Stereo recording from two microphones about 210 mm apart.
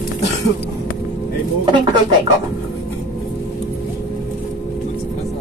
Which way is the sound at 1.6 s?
20° right (ahead or behind).